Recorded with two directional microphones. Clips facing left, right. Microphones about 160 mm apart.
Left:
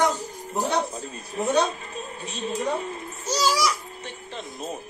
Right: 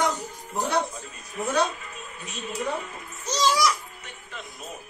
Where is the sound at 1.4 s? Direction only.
30° left (ahead or behind).